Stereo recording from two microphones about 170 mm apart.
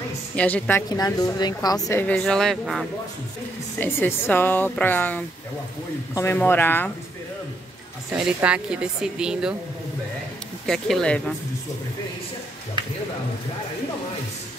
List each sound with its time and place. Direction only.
0.4 s speech: 10° left (ahead or behind)
0.8 s speech: 20° left (ahead or behind); by 2.9 s centre (ahead or behind)
3.8 s speech: 10° left (ahead or behind)
8.4 s speech: 5° right (ahead or behind)
10.7 s speech: 5° left (ahead or behind)